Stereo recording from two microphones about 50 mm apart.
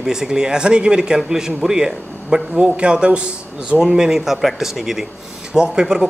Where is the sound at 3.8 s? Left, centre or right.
Centre.